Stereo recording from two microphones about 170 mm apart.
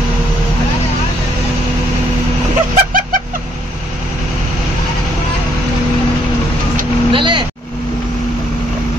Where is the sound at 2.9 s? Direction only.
55° right (ahead or behind).